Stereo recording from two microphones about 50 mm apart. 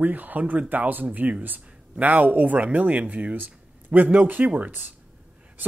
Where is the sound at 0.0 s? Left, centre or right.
Right.